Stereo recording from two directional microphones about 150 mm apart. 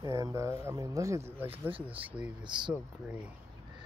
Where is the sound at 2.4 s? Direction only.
30° right (ahead or behind).